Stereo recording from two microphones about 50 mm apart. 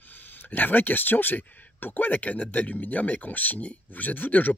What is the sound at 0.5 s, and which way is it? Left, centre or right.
Speech, left.